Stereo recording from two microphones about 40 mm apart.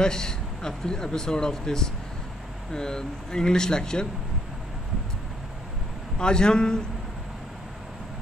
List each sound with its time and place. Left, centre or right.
0.0 s speech: centre
6.1 s a man's voice: left